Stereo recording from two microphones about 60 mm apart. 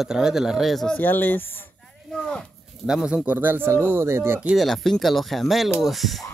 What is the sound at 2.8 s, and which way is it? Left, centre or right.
Speech, centre.